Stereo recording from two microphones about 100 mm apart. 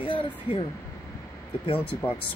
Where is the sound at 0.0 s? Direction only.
60° left (ahead or behind).